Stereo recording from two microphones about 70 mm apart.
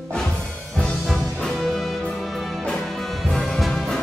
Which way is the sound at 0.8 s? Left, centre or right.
Centre.